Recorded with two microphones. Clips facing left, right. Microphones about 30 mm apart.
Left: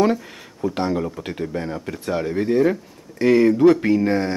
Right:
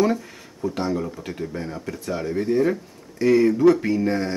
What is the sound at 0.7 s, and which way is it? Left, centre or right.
Speech, left.